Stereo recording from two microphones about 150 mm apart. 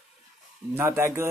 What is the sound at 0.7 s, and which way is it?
Speech, 15° right (ahead or behind).